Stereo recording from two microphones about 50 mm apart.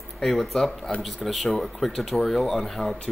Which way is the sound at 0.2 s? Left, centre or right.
Centre.